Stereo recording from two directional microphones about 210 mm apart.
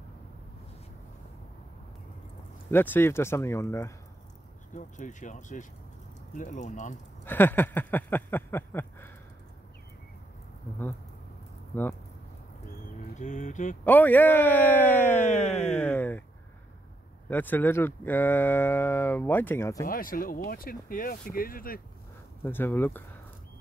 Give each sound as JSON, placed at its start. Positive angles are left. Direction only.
{"t": 2.7, "sound": "speech", "side_deg": 10}
{"t": 4.7, "sound": "speech", "side_deg": 35}
{"t": 7.2, "sound": "speech", "side_deg": 10}
{"t": 11.7, "sound": "speech", "side_deg": 10}
{"t": 13.2, "sound": "speech", "side_deg": 35}
{"t": 13.8, "sound": "speech", "side_deg": 10}
{"t": 15.1, "sound": "speech", "side_deg": 35}
{"t": 15.7, "sound": "speech", "side_deg": 10}
{"t": 17.3, "sound": "speech", "side_deg": 10}
{"t": 19.9, "sound": "speech", "side_deg": 40}
{"t": 22.4, "sound": "speech", "side_deg": 10}